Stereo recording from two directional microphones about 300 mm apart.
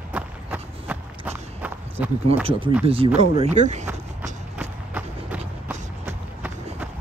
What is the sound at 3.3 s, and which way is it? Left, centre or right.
Speech, right.